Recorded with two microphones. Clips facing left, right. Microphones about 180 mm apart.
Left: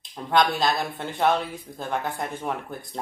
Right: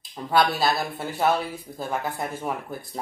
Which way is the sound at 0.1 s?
5° right (ahead or behind).